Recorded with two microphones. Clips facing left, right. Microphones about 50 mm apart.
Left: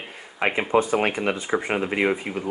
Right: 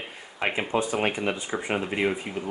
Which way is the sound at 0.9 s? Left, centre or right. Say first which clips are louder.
Left 3 dB; centre.